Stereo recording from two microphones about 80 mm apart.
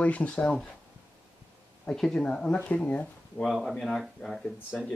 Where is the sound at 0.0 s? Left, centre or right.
Centre.